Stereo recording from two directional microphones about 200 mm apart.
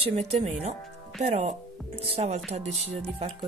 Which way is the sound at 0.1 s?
30° right (ahead or behind).